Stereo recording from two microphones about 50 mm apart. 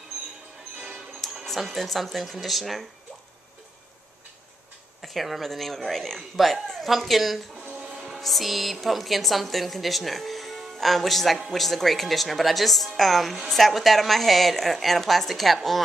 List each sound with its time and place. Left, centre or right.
1.2 s music: centre
1.6 s a woman's voice: centre
5.0 s a woman's voice: centre
7.6 s music: right
8.0 s a woman's voice: centre